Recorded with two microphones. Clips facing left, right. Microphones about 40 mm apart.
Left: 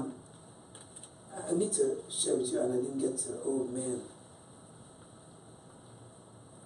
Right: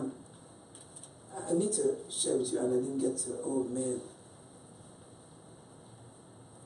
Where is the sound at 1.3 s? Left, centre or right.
Centre.